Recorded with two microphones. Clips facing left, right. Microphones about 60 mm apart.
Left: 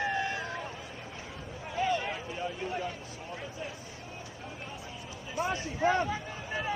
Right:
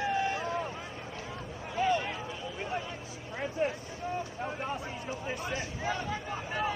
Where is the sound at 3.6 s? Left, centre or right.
Right.